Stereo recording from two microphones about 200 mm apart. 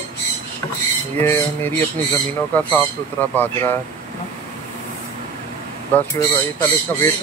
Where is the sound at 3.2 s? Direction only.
10° left (ahead or behind).